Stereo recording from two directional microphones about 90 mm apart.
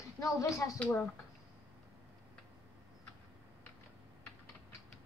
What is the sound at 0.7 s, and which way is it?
Speech, 15° left (ahead or behind).